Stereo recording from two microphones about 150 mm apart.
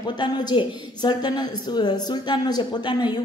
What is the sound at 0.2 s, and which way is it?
A woman's voice, 30° left (ahead or behind).